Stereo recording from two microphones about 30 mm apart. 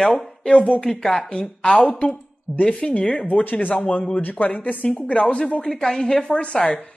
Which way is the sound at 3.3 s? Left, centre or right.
Left.